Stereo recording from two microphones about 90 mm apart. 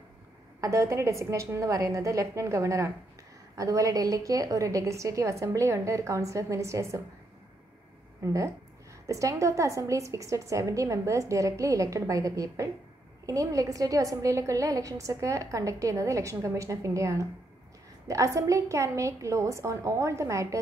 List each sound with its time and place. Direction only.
0.6 s a woman's voice: 35° right (ahead or behind)
8.2 s a woman's voice: 35° right (ahead or behind)